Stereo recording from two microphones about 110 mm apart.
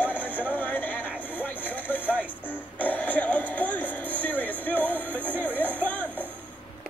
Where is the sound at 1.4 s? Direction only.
15° left (ahead or behind).